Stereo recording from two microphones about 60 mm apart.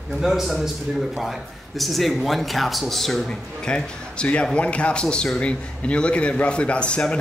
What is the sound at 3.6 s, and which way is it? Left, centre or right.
Speech, centre.